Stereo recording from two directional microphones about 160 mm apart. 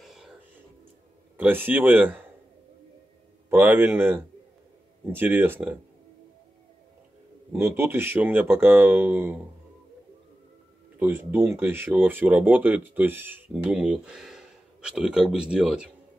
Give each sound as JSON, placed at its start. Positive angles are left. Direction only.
{"t": 0.0, "sound": "whispering", "side_deg": 0}
{"t": 1.4, "sound": "speech", "side_deg": -10}
{"t": 3.4, "sound": "speech", "side_deg": -10}
{"t": 7.5, "sound": "speech", "side_deg": -15}
{"t": 11.0, "sound": "speech", "side_deg": -15}